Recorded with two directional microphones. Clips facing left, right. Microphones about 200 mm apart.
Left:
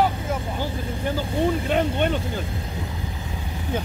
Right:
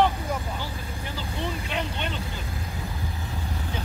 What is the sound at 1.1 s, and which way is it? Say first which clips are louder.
Vehicle: left 9 dB; 50° left (ahead or behind).